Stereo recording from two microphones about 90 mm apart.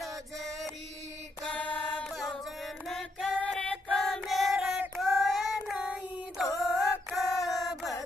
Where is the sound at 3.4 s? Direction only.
10° left (ahead or behind).